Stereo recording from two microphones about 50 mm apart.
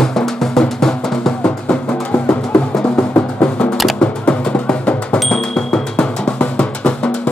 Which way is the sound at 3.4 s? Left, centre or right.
Centre.